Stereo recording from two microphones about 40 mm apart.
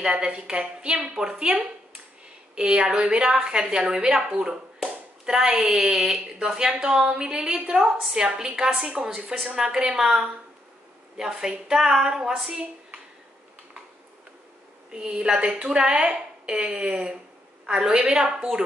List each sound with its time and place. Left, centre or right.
0.0 s a woman's voice: right
14.9 s a woman's voice: right